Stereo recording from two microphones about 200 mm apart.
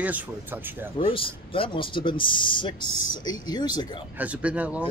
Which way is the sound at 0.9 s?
25° left (ahead or behind).